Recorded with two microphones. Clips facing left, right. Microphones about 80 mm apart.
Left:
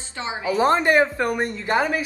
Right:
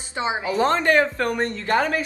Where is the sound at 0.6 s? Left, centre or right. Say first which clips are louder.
Left 1 dB; centre.